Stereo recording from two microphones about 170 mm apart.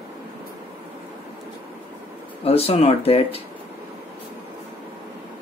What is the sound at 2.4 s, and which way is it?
Speech, 35° left (ahead or behind).